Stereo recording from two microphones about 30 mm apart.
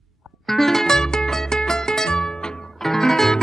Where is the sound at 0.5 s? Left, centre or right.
Centre.